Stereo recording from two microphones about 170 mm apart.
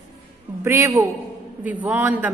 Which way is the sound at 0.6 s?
15° right (ahead or behind).